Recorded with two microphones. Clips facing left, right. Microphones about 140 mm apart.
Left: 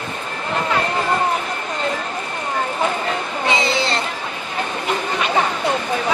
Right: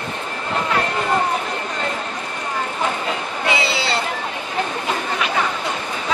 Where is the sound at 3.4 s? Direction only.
10° right (ahead or behind).